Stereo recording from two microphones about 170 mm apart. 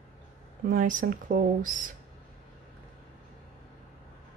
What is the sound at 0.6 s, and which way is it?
Speech, 50° right (ahead or behind).